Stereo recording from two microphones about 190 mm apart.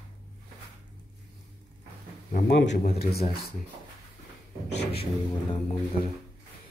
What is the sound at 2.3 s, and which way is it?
Speech, 55° left (ahead or behind).